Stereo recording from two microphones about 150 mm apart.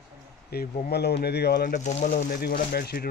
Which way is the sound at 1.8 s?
55° left (ahead or behind).